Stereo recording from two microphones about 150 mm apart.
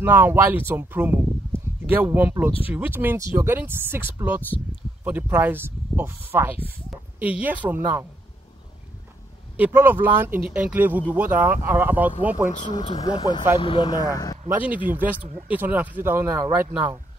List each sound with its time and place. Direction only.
0.0 s speech: 15° right (ahead or behind)
9.6 s speech: 15° right (ahead or behind)
12.4 s speech: 55° left (ahead or behind)
13.0 s speech: 30° left (ahead or behind)
14.6 s speech: 10° right (ahead or behind)